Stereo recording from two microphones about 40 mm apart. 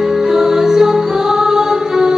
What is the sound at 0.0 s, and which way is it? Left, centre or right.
Music, centre.